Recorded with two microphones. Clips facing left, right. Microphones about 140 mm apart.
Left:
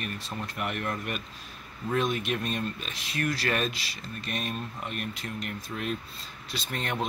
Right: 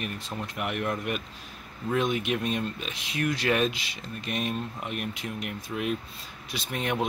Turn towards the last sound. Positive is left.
turn(degrees=-10)  # may be behind; listen again after turning